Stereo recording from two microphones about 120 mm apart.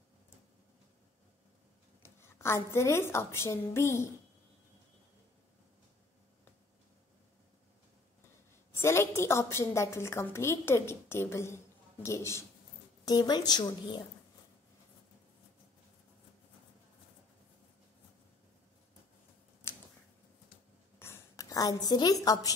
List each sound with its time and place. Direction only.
2.1 s a woman's voice: 20° left (ahead or behind)
8.8 s a woman's voice: 20° left (ahead or behind)
13.0 s a woman's voice: 35° left (ahead or behind)
19.6 s a sound: 20° left (ahead or behind)
21.0 s a woman's voice: 25° left (ahead or behind)